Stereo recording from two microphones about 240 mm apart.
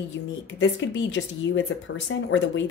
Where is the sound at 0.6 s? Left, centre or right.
Left.